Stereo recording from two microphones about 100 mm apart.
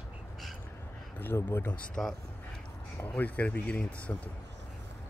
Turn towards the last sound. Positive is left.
turn(degrees=15)  # may be behind; listen again after turning